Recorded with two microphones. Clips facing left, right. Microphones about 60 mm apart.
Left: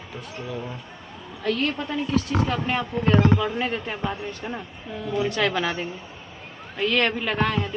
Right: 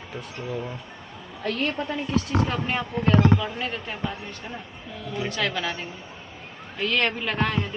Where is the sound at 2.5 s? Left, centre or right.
Centre.